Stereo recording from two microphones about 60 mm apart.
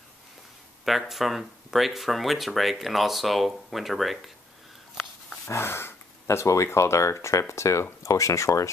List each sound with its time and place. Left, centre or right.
0.8 s speech: centre
5.6 s dog: left
6.2 s speech: left